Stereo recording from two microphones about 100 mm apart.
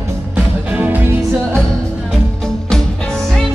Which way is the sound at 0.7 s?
15° right (ahead or behind).